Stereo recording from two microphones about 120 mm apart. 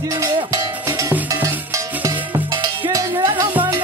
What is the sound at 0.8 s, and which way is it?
Cowbell, 25° right (ahead or behind).